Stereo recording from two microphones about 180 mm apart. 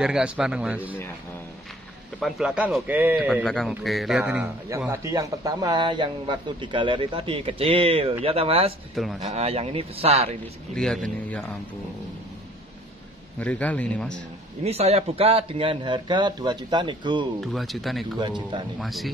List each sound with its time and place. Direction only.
0.0 s a man's voice: 5° right (ahead or behind)
2.1 s a man's voice: centre (ahead or behind)
3.4 s a man's voice: centre (ahead or behind); by 8.7 s 35° right (ahead or behind)
8.9 s a man's voice: centre (ahead or behind)
9.2 s a man's voice: 35° right (ahead or behind)
10.7 s a man's voice: 5° left (ahead or behind)
13.4 s a man's voice: 10° left (ahead or behind)
14.6 s speech: 35° right (ahead or behind)
17.4 s a man's voice: centre (ahead or behind)
18.2 s speech: 25° right (ahead or behind)
18.8 s a man's voice: centre (ahead or behind)